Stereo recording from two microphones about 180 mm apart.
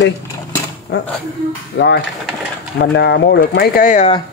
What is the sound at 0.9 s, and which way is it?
Speech, 75° left (ahead or behind).